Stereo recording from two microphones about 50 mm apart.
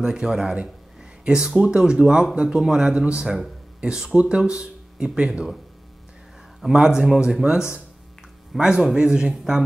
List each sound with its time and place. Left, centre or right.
0.0 s speech: centre
6.6 s speech: centre